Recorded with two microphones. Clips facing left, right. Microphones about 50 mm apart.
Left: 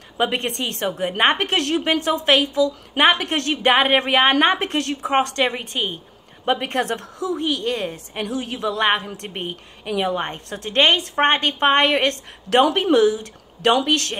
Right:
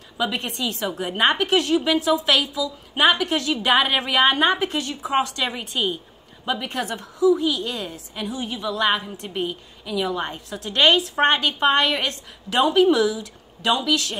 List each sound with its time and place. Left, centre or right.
0.2 s a woman's voice: left
1.1 s a woman's voice: left
4.3 s a woman's voice: left
8.3 s a woman's voice: left
8.7 s a woman's voice: left
12.7 s a woman's voice: left